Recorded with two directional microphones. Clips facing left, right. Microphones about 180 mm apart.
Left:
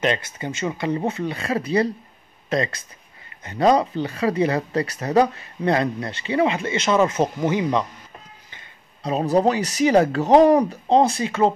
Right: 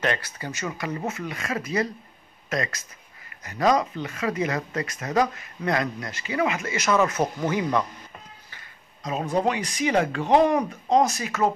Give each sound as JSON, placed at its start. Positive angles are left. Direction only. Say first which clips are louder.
{"t": 0.0, "sound": "speech", "louder": "left 4 dB", "side_deg": 20}
{"t": 9.0, "sound": "speech", "louder": "left 5 dB", "side_deg": 35}